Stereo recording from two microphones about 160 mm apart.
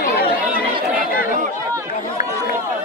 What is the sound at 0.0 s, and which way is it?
Chatter, 65° left (ahead or behind).